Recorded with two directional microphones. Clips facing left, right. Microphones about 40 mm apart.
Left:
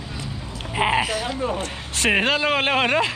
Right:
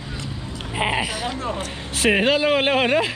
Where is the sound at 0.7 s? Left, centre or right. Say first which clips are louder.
Left 2 dB; centre.